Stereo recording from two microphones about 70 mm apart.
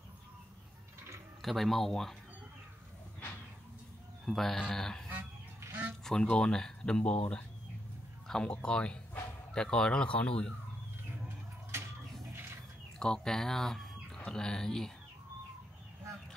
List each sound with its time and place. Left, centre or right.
1.4 s speech: centre
4.3 s speech: centre
5.6 s goose: right
6.0 s speech: centre
11.2 s a sound: right
13.0 s speech: centre